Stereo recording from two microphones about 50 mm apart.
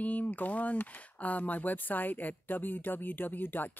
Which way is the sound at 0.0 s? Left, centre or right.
Left.